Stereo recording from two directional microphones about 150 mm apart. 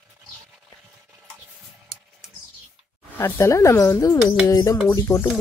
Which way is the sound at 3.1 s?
15° left (ahead or behind).